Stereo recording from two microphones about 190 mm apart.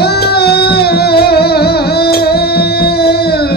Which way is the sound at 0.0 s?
55° left (ahead or behind).